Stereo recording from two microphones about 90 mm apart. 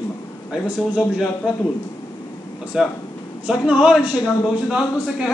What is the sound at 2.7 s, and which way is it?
A man's voice, 5° right (ahead or behind).